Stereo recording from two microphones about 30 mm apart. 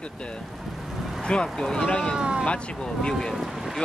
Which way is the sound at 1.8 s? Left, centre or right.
Left.